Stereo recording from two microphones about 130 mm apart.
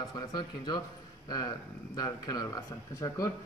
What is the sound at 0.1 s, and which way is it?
Speech, 35° left (ahead or behind).